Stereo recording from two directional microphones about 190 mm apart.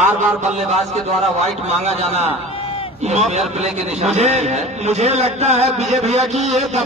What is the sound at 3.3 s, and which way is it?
A man's voice, 35° right (ahead or behind).